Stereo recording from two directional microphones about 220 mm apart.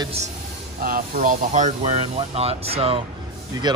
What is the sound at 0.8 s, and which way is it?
Speech, 40° right (ahead or behind).